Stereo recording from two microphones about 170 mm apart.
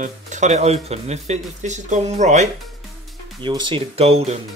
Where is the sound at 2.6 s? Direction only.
Centre (ahead or behind).